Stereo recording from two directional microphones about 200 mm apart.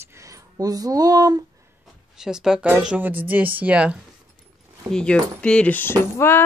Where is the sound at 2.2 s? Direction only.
5° right (ahead or behind).